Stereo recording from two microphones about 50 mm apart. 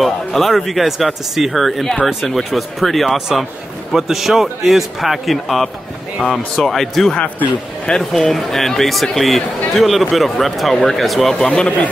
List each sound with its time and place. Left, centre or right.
0.0 s speech: centre
7.9 s speech: left
8.3 s speech: centre
11.3 s speech: centre